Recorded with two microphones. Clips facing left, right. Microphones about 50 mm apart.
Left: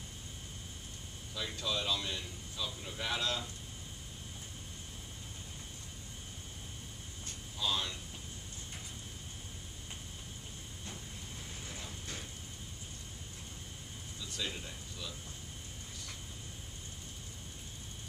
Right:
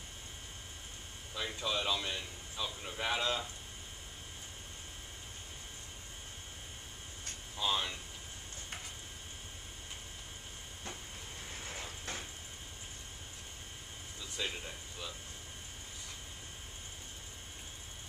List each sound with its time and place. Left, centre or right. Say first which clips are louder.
1.3 s speech: right 1 dB; right
7.5 s speech: right 2 dB; right
14.3 s speech: right 1 dB; right